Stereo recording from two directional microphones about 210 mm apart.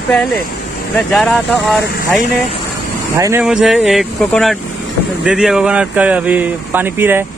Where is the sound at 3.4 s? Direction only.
Centre (ahead or behind).